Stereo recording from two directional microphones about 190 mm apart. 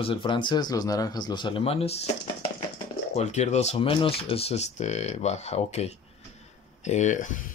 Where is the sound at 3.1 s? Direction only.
35° left (ahead or behind).